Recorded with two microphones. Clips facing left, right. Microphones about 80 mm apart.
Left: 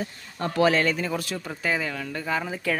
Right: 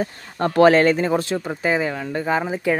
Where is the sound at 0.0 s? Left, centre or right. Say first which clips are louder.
Right 7 dB; right.